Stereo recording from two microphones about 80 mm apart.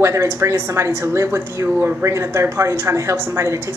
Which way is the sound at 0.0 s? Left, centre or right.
Right.